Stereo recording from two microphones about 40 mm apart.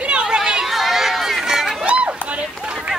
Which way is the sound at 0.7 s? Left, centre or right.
Centre.